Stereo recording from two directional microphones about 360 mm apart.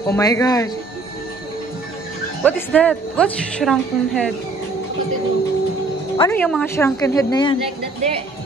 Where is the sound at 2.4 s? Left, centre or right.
Centre.